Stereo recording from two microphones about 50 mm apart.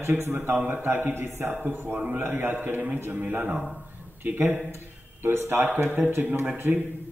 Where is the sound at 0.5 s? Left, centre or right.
Right.